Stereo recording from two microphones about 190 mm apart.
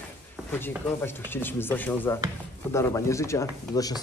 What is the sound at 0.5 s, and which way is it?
Speech, 10° left (ahead or behind).